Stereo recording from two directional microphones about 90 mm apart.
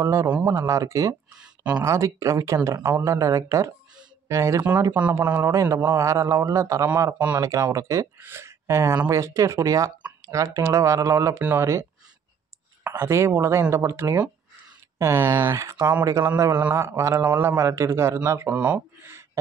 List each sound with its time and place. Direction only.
0.0 s speech: 35° right (ahead or behind)
1.4 s speech: 15° right (ahead or behind)
1.9 s speech: 35° right (ahead or behind)
4.9 s a man's voice: 25° right (ahead or behind)
5.5 s speech: 35° right (ahead or behind)
12.8 s a man's voice: 30° right (ahead or behind)
18.6 s speech: 20° right (ahead or behind)